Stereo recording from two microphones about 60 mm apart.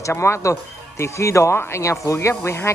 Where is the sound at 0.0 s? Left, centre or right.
Left.